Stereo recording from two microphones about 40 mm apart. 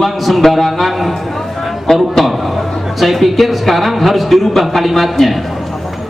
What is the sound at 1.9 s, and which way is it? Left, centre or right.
Speech, centre.